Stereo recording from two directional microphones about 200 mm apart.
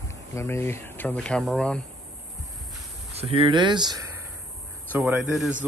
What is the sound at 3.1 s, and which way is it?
Speech, 30° right (ahead or behind).